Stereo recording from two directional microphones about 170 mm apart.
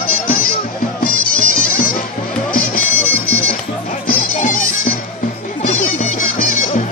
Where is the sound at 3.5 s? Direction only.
45° left (ahead or behind).